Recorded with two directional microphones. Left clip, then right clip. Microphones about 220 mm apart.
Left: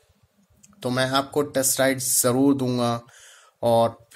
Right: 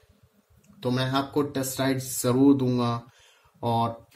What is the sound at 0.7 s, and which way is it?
Speech, 35° left (ahead or behind).